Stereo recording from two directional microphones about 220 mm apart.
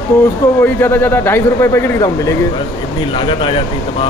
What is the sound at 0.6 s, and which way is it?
Speech, 10° left (ahead or behind).